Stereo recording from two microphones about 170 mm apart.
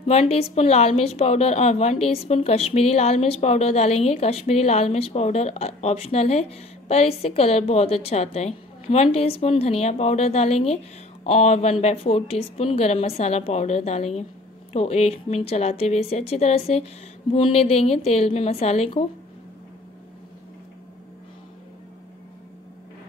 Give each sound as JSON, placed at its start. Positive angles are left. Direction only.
{"t": 0.0, "sound": "a woman's voice", "side_deg": 35}